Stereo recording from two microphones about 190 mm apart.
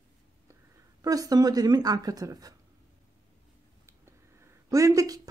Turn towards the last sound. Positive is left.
turn(degrees=-20)  # may be behind; listen again after turning